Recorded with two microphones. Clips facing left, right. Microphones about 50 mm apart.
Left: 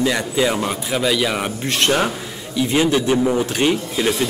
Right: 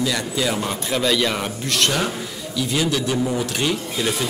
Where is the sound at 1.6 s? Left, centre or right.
Left.